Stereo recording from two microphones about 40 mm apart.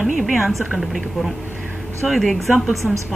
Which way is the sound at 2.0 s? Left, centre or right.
Centre.